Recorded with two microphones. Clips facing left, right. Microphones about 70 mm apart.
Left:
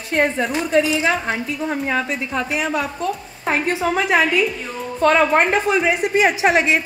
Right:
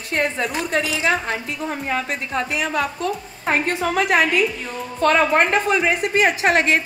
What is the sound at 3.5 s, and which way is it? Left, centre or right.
Speech, right.